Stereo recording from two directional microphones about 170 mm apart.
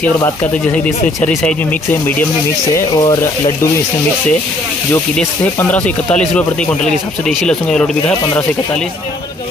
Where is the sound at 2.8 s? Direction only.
25° left (ahead or behind).